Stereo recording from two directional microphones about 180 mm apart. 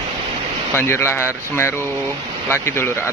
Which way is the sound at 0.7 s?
15° left (ahead or behind).